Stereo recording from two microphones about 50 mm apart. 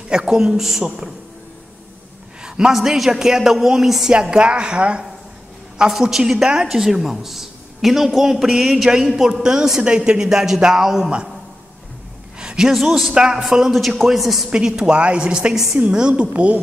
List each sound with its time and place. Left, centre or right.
0.1 s speech: centre
2.4 s a sound: centre
2.7 s speech: centre
4.1 s a woman's voice: centre
5.9 s speech: centre
12.4 s a sound: centre
12.7 s a man's voice: centre
13.1 s speech: centre
14.5 s a woman's voice: centre
15.5 s a woman's voice: centre; by 16.5 s right